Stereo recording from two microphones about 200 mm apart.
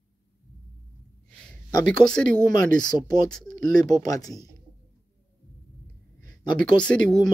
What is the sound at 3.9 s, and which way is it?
Speech, 20° left (ahead or behind).